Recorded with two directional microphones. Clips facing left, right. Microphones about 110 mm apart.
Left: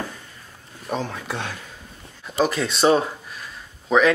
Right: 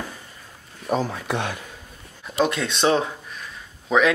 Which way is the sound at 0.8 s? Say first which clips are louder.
Right 3 dB; 5° right (ahead or behind).